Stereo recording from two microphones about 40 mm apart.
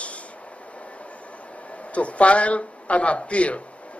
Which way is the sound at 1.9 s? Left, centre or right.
Left.